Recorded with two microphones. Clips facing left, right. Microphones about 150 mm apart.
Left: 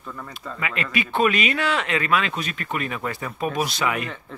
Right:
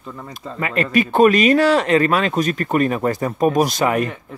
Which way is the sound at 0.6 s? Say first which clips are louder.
Right 9 dB; 40° right (ahead or behind).